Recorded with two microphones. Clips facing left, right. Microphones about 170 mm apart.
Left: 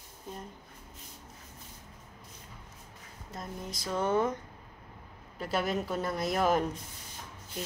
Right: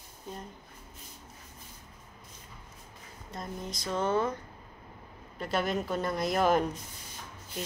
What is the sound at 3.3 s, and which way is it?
Speech, 5° left (ahead or behind).